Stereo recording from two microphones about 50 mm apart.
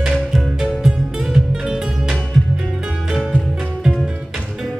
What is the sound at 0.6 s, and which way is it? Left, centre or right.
Music, centre.